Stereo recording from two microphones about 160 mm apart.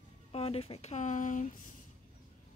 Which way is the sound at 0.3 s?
40° left (ahead or behind).